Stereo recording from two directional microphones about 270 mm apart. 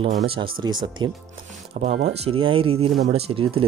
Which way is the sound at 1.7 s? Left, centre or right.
Right.